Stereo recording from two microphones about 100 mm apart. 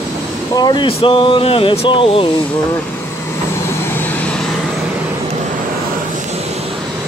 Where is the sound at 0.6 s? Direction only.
45° left (ahead or behind).